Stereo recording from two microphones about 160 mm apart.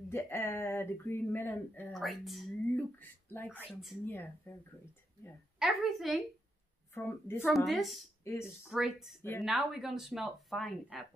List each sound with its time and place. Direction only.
0.1 s speech: 15° left (ahead or behind)
1.9 s speech: centre (ahead or behind)
2.7 s speech: 10° left (ahead or behind)
5.6 s speech: centre (ahead or behind)
6.9 s speech: 15° left (ahead or behind)
7.4 s speech: centre (ahead or behind)
8.2 s speech: 15° left (ahead or behind)
8.5 s speech: 5° right (ahead or behind)